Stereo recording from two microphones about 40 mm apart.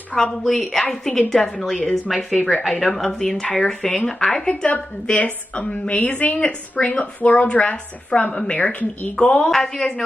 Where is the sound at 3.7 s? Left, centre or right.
Centre.